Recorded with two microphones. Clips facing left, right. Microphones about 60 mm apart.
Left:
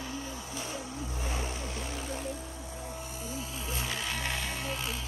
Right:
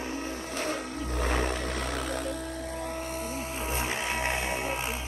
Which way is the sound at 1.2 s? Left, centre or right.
Right.